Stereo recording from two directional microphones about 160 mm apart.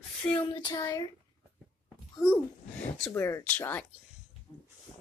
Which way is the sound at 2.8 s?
10° left (ahead or behind).